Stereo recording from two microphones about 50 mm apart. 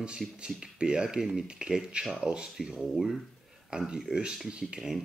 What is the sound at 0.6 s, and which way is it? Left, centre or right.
Speech, centre.